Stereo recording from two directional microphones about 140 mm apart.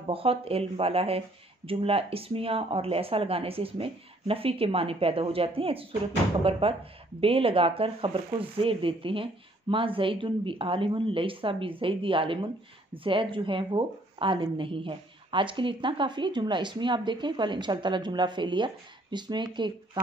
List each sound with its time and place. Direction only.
0.0 s speech: 45° right (ahead or behind)